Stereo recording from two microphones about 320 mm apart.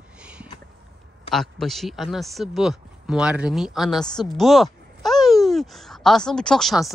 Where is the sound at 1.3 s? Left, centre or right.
Centre.